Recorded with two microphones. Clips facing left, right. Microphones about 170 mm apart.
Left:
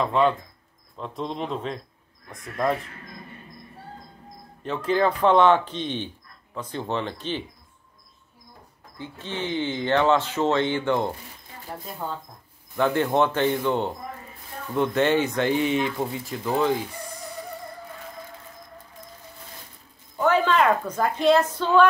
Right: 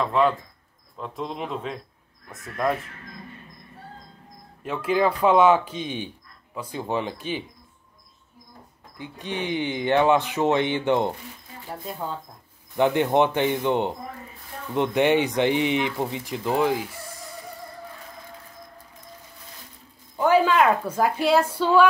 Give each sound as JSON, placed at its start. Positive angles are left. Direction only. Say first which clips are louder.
{"t": 0.0, "sound": "speech", "louder": "even", "side_deg": 0}
{"t": 4.6, "sound": "speech", "louder": "even", "side_deg": -10}
{"t": 8.9, "sound": "speech", "louder": "right 2 dB", "side_deg": -15}
{"t": 12.7, "sound": "speech", "louder": "right 2 dB", "side_deg": -20}
{"t": 20.2, "sound": "a woman's voice", "louder": "right 2 dB", "side_deg": -10}